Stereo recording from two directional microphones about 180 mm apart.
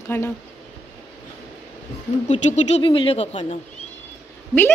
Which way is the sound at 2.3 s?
40° left (ahead or behind).